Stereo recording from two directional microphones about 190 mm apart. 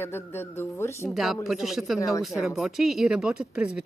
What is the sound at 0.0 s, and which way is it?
Speech, 10° left (ahead or behind).